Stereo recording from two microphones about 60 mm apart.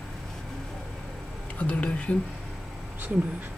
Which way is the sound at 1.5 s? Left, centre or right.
Left.